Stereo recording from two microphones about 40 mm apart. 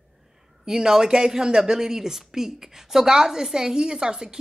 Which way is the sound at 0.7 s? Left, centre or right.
Centre.